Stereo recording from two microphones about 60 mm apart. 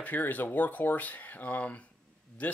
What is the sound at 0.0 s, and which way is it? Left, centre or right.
Speech, left.